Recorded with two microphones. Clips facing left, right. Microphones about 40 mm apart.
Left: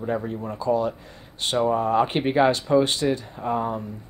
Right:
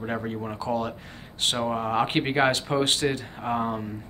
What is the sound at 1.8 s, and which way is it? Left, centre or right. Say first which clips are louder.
Speech: left 4 dB; right.